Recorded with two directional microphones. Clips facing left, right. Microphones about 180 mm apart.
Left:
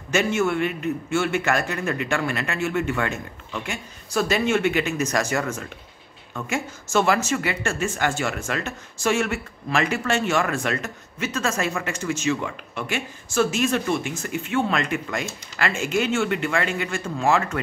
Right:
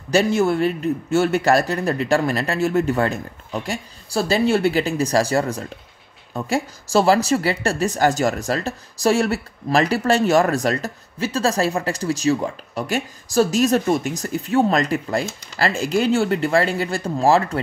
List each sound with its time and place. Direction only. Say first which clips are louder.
0.1 s speech: right 4 dB; 35° right (ahead or behind)